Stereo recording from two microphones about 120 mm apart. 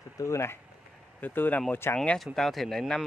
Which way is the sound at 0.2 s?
25° left (ahead or behind).